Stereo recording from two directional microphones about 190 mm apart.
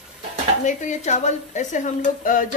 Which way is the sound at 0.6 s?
40° left (ahead or behind).